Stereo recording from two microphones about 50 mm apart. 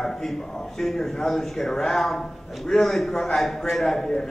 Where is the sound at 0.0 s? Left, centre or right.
Centre.